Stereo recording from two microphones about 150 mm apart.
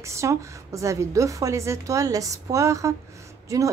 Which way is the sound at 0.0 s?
20° right (ahead or behind).